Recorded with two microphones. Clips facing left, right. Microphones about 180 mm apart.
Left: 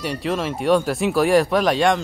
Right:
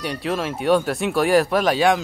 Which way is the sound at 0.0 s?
Centre (ahead or behind).